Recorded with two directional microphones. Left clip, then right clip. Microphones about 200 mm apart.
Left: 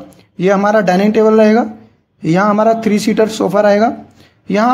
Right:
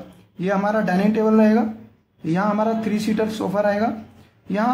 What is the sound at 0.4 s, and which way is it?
Speech, 35° left (ahead or behind).